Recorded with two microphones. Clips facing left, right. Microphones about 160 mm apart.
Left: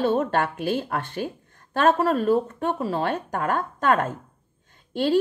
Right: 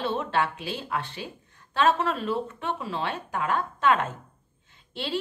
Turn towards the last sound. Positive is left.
turn(degrees=45)  # may be behind; listen again after turning